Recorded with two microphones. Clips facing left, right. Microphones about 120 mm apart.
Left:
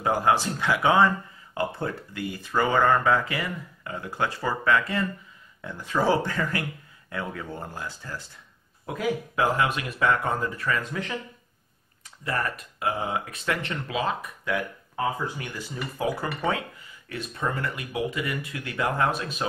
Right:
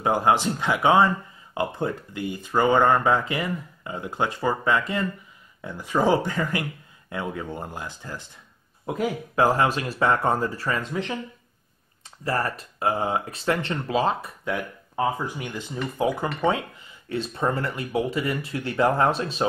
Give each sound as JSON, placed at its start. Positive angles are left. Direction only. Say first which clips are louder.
{"t": 0.0, "sound": "speech", "louder": "right 2 dB", "side_deg": -20}
{"t": 9.0, "sound": "speech", "louder": "right 3 dB", "side_deg": -35}
{"t": 12.3, "sound": "speech", "louder": "right 3 dB", "side_deg": -30}